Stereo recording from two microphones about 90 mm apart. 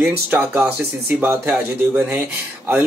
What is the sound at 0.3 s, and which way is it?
Speech, 20° right (ahead or behind).